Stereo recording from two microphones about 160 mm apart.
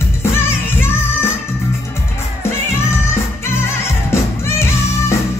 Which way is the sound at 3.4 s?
15° left (ahead or behind).